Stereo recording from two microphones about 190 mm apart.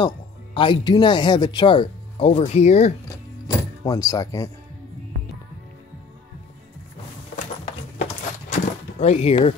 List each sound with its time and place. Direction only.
0.6 s speech: 25° left (ahead or behind)
3.4 s speech: 20° left (ahead or behind)
8.5 s a sound: 35° left (ahead or behind)